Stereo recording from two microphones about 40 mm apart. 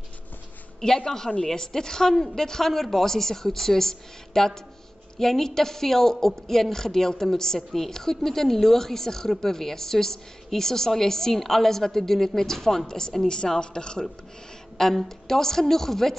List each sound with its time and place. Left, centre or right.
0.7 s a woman's voice: centre
15.0 s a woman's voice: centre